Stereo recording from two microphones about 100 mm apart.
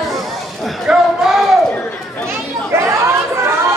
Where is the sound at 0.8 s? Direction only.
5° right (ahead or behind).